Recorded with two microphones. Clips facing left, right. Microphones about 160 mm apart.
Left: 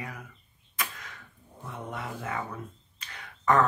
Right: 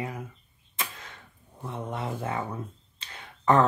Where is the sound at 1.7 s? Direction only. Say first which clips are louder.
Right 4 dB; 30° right (ahead or behind).